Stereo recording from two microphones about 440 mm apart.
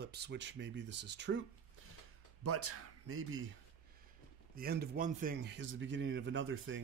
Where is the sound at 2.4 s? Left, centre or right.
Right.